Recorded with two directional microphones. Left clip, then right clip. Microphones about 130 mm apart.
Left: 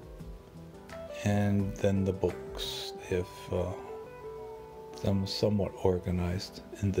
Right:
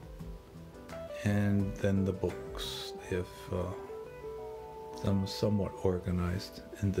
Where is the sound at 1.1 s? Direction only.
15° left (ahead or behind).